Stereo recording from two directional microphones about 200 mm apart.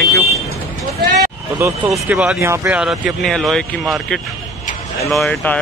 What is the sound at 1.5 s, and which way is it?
Speech, 15° right (ahead or behind).